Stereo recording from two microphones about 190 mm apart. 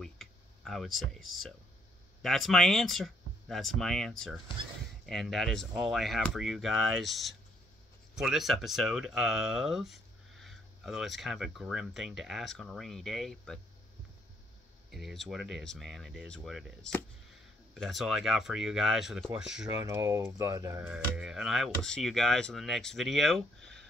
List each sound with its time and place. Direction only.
0.0 s a sound: centre (ahead or behind)
2.2 s speech: centre (ahead or behind)
14.9 s speech: centre (ahead or behind)
19.7 s speech: 15° right (ahead or behind)
20.9 s speech: 5° right (ahead or behind)